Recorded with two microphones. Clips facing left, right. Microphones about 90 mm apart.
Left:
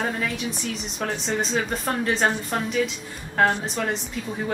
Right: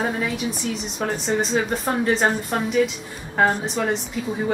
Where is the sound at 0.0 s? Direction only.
10° right (ahead or behind).